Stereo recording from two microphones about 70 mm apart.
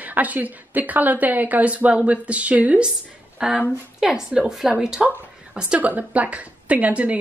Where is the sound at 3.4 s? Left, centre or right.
Centre.